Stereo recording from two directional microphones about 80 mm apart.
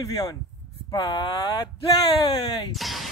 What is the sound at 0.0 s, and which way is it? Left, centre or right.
Speech, left.